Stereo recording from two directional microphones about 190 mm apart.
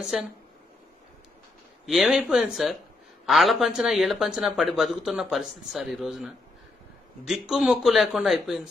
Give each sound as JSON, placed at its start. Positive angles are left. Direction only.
{"t": 0.0, "sound": "speech", "side_deg": 0}
{"t": 1.9, "sound": "speech", "side_deg": 0}